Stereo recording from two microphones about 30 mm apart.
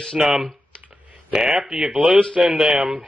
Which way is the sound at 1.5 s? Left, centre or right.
Centre.